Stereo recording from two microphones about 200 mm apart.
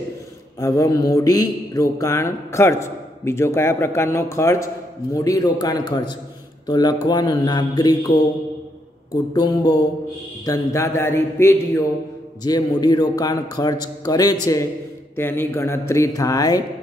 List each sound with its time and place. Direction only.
0.6 s a man's voice: 15° left (ahead or behind)
9.3 s a man's voice: 20° left (ahead or behind)